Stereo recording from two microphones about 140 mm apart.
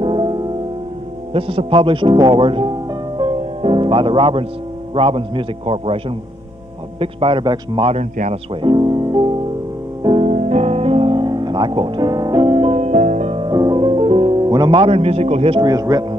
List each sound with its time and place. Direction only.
0.0 s music: 35° right (ahead or behind)
1.3 s a man's voice: 40° right (ahead or behind)
3.2 s music: 40° right (ahead or behind)
4.9 s a man's voice: 40° right (ahead or behind)
7.9 s a man's voice: 55° right (ahead or behind)
8.6 s music: 35° right (ahead or behind)
10.2 s music: 55° right (ahead or behind)
13.3 s music: 35° right (ahead or behind)
15.6 s speech: 25° right (ahead or behind)